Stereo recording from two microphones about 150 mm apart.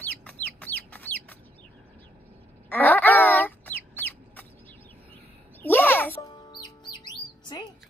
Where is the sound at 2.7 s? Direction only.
10° left (ahead or behind).